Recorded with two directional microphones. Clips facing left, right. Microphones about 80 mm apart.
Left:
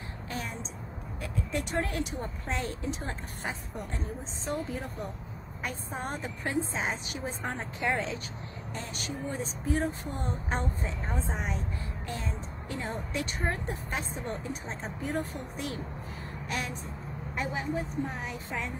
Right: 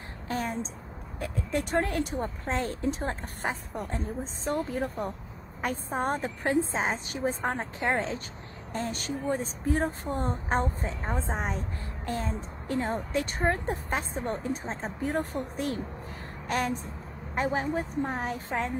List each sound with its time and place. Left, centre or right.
0.3 s a sound: right
1.5 s speech: right
16.4 s music: right
17.4 s speech: right